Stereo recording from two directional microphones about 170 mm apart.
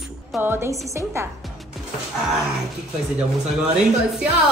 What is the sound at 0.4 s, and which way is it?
Speech, 15° right (ahead or behind).